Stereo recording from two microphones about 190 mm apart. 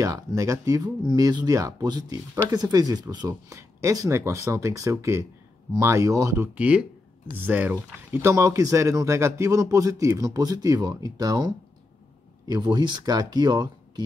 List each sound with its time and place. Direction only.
0.0 s speech: 15° right (ahead or behind)